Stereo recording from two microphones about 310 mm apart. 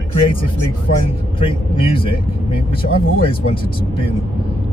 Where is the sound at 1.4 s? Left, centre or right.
Centre.